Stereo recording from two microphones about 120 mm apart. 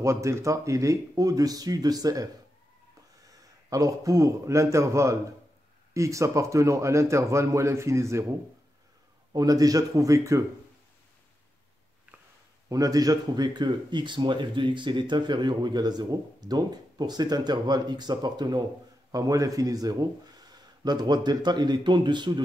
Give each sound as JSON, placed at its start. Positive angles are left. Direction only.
{"t": 0.0, "sound": "speech", "side_deg": -25}
{"t": 3.7, "sound": "speech", "side_deg": -25}
{"t": 9.3, "sound": "speech", "side_deg": -30}
{"t": 12.6, "sound": "speech", "side_deg": -30}